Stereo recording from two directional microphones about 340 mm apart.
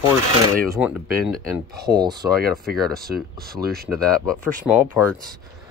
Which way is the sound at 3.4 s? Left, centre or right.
Right.